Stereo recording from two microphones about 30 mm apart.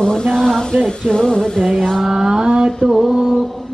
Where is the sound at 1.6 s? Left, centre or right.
Centre.